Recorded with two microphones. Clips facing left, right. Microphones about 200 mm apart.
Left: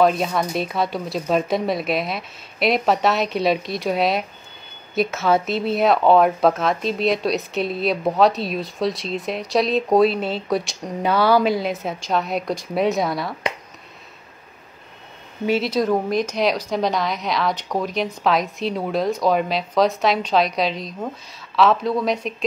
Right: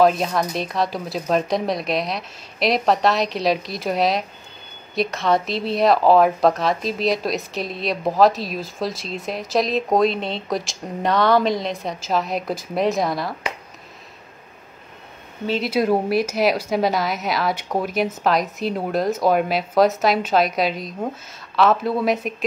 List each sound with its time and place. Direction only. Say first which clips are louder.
0.0 s speech: right 1 dB; centre (ahead or behind)
15.6 s speech: right 1 dB; 10° right (ahead or behind)